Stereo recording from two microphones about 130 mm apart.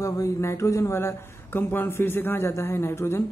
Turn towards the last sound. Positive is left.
turn(degrees=20)  # may be behind; listen again after turning